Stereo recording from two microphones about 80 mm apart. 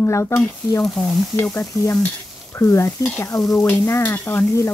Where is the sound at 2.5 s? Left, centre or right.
Left.